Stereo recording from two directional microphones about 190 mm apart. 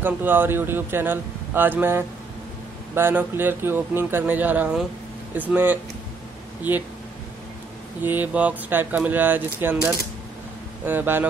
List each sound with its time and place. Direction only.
0.0 s speech: 10° right (ahead or behind)
8.0 s speech: 10° right (ahead or behind)